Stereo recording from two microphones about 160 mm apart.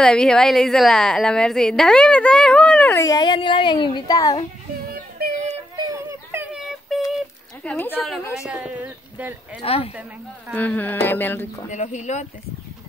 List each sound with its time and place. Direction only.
0.0 s a woman's voice: 5° left (ahead or behind); by 4.5 s 25° left (ahead or behind)
5.8 s a sound: 20° right (ahead or behind); by 7.0 s centre (ahead or behind)
7.6 s speech: 10° left (ahead or behind)
8.5 s speech: 5° right (ahead or behind)
9.6 s speech: 35° left (ahead or behind)
10.5 s speech: 10° left (ahead or behind)
11.7 s speech: 50° left (ahead or behind)